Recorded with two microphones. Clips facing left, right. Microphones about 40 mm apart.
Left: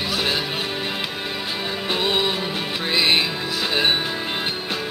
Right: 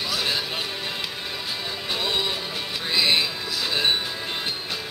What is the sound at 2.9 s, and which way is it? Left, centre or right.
Music, left.